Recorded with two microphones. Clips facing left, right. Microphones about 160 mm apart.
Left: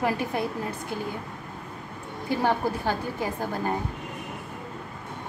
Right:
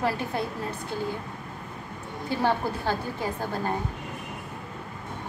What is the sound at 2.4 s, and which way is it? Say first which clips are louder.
Speech: even; 15° left (ahead or behind).